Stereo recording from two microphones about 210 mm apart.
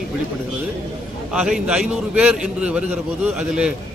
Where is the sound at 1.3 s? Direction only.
5° right (ahead or behind).